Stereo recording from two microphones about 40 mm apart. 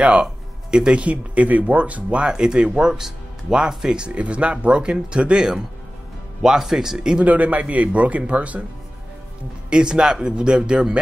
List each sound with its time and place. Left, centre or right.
0.2 s music: centre
0.9 s speech: right
2.3 s speech: right
7.2 s speech: right
9.7 s speech: right